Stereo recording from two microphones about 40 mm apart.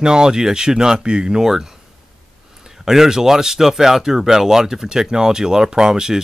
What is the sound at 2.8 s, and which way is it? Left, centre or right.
Speech, centre.